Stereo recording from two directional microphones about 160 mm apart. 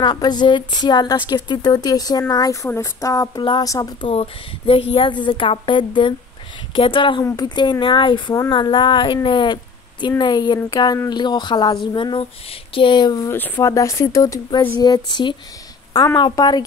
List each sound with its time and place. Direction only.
0.0 s a woman's voice: 25° left (ahead or behind)
4.1 s a woman's voice: 35° left (ahead or behind)